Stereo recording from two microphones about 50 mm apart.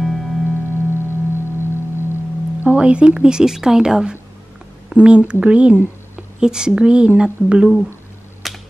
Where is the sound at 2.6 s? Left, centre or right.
Right.